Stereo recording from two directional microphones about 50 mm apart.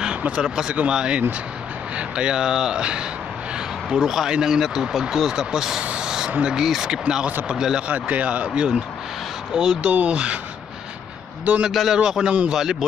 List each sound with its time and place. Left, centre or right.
0.4 s speech: centre
5.9 s a sound: centre
6.3 s speech: centre
6.6 s speech: centre
7.9 s speech: right; by 9.8 s centre
9.8 s speech: right
11.6 s speech: centre